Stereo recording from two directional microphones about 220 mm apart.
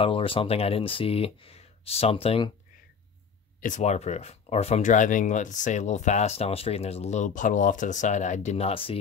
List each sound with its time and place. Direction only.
0.0 s speech: 25° left (ahead or behind)
3.6 s speech: 30° left (ahead or behind)